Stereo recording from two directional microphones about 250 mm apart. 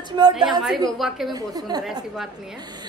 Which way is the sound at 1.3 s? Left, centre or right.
Centre.